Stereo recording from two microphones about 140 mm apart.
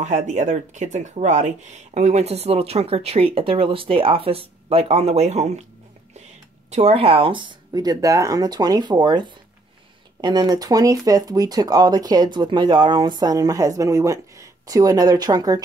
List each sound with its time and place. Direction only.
0.0 s speech: 60° right (ahead or behind)
6.7 s speech: 50° right (ahead or behind); by 15.6 s 25° right (ahead or behind)